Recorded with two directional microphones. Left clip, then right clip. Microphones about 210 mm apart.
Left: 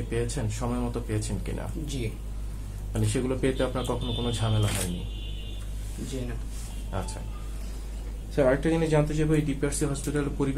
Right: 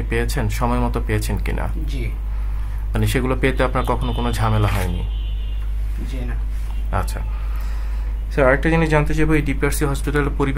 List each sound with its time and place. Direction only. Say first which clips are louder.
0.1 s speech: right 8 dB; 45° right (ahead or behind)
2.9 s speech: right 8 dB; 45° right (ahead or behind)
6.9 s speech: right 11 dB; 45° right (ahead or behind)
8.4 s speech: right 7 dB; 40° right (ahead or behind)